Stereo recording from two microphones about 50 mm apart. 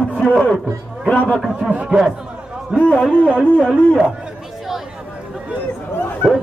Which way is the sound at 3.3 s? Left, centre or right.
Centre.